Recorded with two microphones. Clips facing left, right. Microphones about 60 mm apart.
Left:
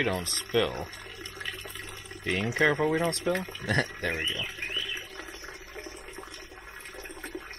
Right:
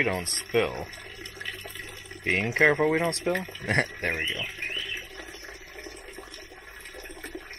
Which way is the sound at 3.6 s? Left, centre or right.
Right.